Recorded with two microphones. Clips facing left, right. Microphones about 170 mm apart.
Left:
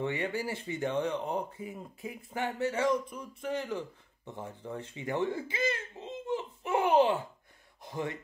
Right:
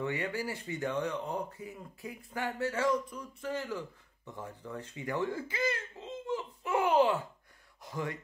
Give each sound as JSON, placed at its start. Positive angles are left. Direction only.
{"t": 0.0, "sound": "speech", "side_deg": 25}